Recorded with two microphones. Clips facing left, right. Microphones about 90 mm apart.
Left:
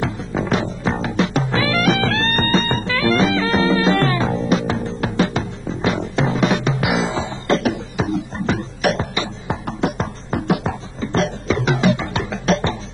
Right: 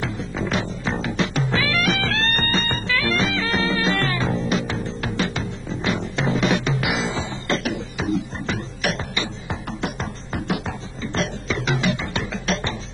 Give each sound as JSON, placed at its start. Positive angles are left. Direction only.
{"t": 0.0, "sound": "music", "side_deg": 45}
{"t": 6.3, "sound": "music", "side_deg": 40}
{"t": 7.0, "sound": "beatboxing", "side_deg": 40}
{"t": 9.5, "sound": "music", "side_deg": 45}